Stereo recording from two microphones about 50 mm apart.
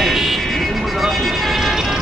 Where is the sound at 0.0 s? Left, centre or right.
Centre.